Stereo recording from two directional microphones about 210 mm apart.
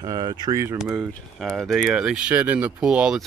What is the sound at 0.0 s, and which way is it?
Speech, 20° right (ahead or behind).